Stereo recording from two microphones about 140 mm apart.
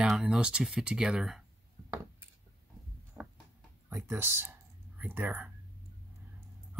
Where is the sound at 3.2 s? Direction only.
15° right (ahead or behind).